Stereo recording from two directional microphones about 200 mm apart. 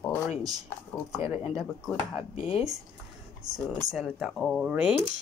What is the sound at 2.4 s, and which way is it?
Speech, 30° left (ahead or behind).